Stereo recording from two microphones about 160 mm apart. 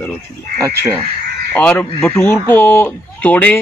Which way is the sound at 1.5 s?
10° left (ahead or behind).